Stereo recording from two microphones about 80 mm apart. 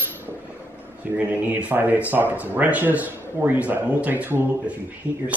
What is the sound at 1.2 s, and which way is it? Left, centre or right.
Speech, right.